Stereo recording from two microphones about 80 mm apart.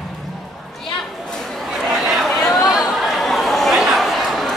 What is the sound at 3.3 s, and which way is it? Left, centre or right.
Chatter, centre.